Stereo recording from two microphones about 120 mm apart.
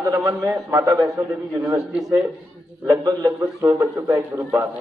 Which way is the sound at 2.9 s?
30° right (ahead or behind).